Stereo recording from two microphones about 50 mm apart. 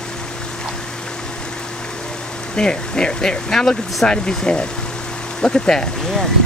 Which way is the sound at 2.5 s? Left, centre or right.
Centre.